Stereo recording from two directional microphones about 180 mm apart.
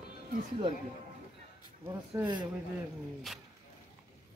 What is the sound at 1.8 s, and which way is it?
Speech, 15° right (ahead or behind).